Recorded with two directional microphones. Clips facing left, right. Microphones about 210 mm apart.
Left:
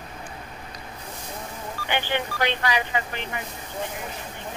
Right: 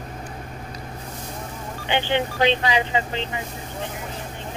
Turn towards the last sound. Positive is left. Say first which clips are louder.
# right 4 dB
turn(degrees=-20)  # may be behind; listen again after turning